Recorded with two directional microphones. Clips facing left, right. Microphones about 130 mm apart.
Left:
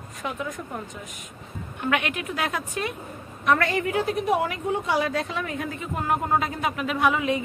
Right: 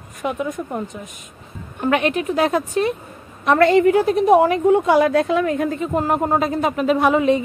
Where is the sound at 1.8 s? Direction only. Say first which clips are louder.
Right 8 dB; 35° right (ahead or behind).